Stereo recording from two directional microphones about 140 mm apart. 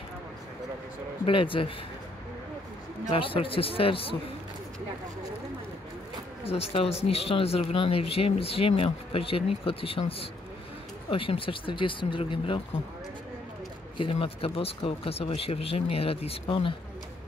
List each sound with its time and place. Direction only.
1.2 s speech: 40° left (ahead or behind)
3.1 s speech: 40° left (ahead or behind)
6.4 s speech: 45° left (ahead or behind)
13.9 s speech: 40° left (ahead or behind)